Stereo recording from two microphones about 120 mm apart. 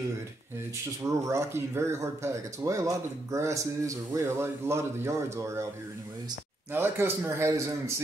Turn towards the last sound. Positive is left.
turn(degrees=-25)  # may be behind; listen again after turning